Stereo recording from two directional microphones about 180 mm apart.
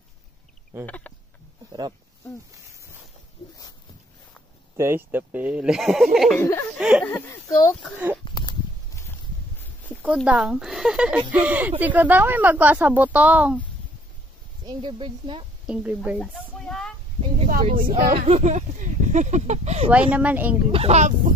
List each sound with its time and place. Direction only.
0.8 s speech: 10° left (ahead or behind)
1.7 s speech: 25° right (ahead or behind)
4.7 s speech: 15° right (ahead or behind)
6.4 s speech: 10° left (ahead or behind)
6.8 s speech: 5° right (ahead or behind)
8.4 s a sound: 25° left (ahead or behind)
10.0 s speech: 5° right (ahead or behind)
14.7 s speech: 25° right (ahead or behind)
15.6 s speech: 5° right (ahead or behind)
16.2 s a sound: 5° left (ahead or behind)
17.7 s speech: 55° right (ahead or behind)
18.1 s speech: 35° right (ahead or behind)
19.9 s speech: 10° right (ahead or behind)
20.7 s speech: 35° right (ahead or behind)